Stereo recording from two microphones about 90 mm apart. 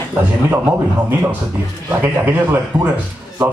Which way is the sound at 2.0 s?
20° right (ahead or behind).